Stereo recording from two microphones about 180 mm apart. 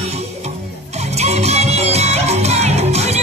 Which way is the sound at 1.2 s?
35° right (ahead or behind).